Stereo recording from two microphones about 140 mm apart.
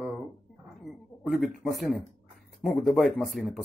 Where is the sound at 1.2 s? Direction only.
Centre (ahead or behind).